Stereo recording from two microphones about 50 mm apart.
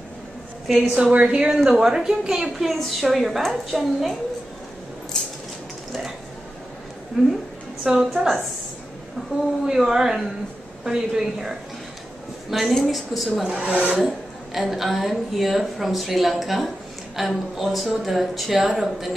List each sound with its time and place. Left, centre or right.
0.8 s a woman's voice: right; by 4.2 s centre
5.1 s a sound: centre
7.2 s a woman's voice: centre
9.7 s a woman's voice: centre
13.5 s speech: right
14.0 s a woman's voice: centre